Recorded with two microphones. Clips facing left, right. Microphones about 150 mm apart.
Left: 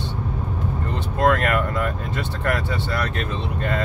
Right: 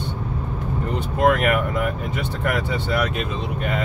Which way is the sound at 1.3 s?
15° right (ahead or behind).